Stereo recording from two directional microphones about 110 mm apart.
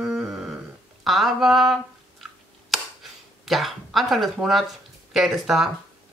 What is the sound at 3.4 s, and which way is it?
Speech, centre (ahead or behind).